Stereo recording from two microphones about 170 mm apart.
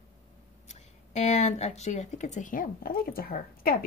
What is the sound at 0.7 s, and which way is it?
Speech, 40° left (ahead or behind).